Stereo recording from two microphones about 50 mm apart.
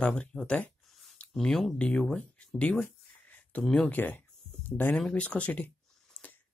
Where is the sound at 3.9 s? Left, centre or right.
Left.